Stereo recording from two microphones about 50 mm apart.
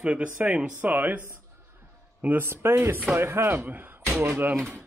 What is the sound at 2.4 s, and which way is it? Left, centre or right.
Speech, right.